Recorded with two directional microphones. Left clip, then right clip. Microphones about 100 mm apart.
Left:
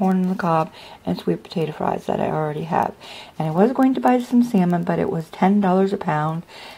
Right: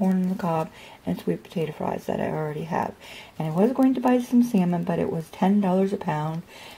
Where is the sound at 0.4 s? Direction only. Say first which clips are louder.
Left 9 dB; 30° left (ahead or behind).